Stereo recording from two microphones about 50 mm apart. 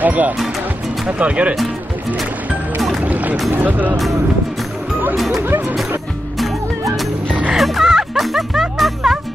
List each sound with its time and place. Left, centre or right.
0.0 s music: right
1.0 s speech: right
3.0 s music: right
3.5 s speech: right
7.5 s music: centre